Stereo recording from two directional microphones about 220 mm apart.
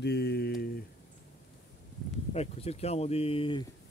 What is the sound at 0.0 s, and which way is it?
Mantra, 45° left (ahead or behind).